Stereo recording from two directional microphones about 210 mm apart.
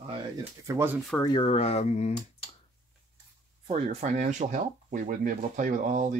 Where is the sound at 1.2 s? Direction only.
20° left (ahead or behind).